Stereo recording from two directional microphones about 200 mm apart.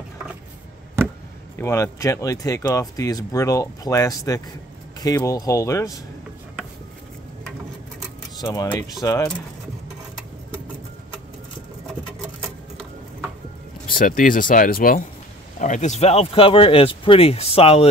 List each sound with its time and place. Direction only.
1.6 s speech: 15° left (ahead or behind)
8.4 s speech: 20° left (ahead or behind)
13.9 s speech: 40° left (ahead or behind)